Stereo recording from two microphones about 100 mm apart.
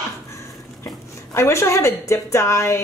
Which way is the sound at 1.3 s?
25° left (ahead or behind).